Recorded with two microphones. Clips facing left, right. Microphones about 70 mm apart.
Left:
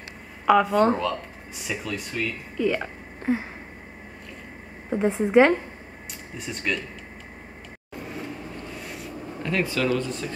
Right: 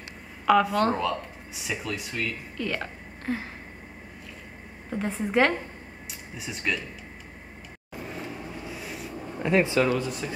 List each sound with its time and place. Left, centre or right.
0.7 s speech: centre
2.5 s a sound: centre
4.8 s a woman's voice: centre
6.3 s speech: centre
7.9 s vehicle: centre
9.4 s speech: centre
9.8 s speech: centre